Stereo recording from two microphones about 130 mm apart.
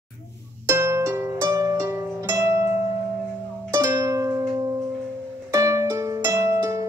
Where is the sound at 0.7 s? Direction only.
20° right (ahead or behind).